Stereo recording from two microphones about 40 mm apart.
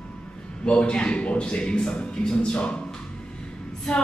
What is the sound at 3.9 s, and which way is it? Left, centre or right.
Female singing, centre.